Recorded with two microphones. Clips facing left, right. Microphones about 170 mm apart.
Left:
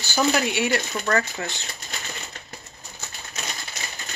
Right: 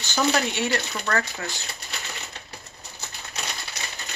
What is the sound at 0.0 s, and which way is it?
Speech, 10° left (ahead or behind).